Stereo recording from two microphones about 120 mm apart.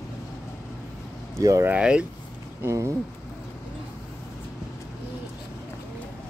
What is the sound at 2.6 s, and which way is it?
Speech, 25° right (ahead or behind).